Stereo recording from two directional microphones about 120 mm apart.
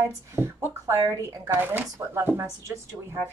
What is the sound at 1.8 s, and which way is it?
Speech, 30° right (ahead or behind).